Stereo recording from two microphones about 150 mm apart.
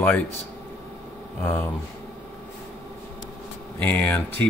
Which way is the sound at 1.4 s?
15° left (ahead or behind).